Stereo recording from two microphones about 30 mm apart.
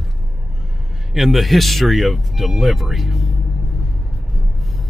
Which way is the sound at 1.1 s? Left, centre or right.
Centre.